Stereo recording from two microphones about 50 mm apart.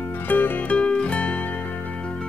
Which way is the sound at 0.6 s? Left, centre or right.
Left.